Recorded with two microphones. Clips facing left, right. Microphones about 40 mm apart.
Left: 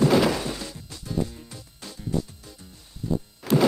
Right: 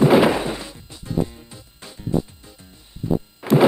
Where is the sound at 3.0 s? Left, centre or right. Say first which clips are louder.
Right 5 dB; right.